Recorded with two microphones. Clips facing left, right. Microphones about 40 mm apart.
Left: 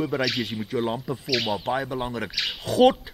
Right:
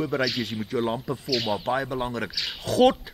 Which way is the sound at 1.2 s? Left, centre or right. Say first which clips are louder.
Left 2 dB; left.